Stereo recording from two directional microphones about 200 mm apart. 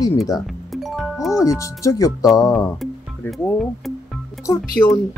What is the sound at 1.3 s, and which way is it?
Speech, 15° left (ahead or behind).